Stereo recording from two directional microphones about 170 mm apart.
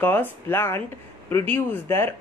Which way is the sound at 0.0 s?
10° left (ahead or behind).